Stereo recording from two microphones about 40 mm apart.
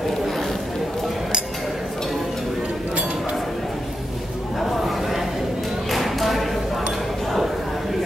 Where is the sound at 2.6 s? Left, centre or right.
Right.